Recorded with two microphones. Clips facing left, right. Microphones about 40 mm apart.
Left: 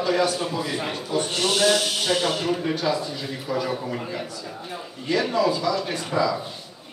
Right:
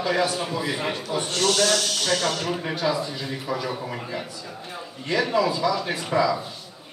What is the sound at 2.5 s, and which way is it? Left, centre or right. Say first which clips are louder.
Speech: left 1 dB; centre.